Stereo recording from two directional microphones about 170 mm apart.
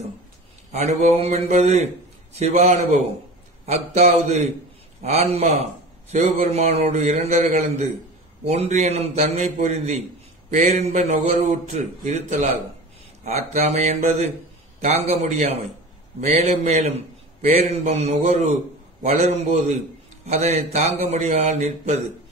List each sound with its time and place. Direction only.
0.7 s a man's voice: 40° right (ahead or behind)